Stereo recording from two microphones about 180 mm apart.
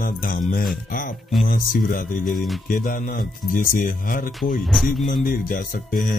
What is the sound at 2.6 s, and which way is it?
Speech, 50° left (ahead or behind).